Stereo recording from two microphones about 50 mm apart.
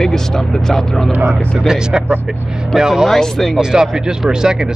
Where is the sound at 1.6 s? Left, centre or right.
Centre.